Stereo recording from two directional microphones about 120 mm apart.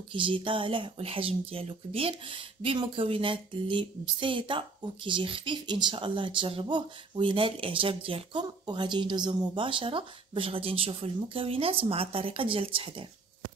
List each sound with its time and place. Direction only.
0.1 s speech: 45° right (ahead or behind)